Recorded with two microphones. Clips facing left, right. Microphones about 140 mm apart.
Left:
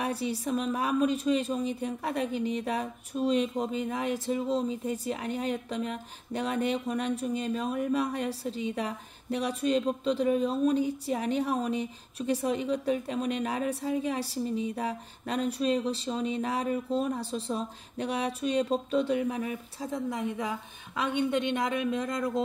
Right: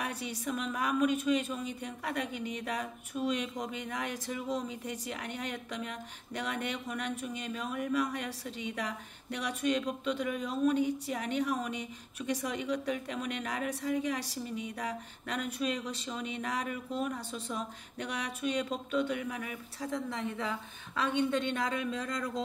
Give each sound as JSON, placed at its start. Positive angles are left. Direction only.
{"t": 0.0, "sound": "a woman's voice", "side_deg": 30}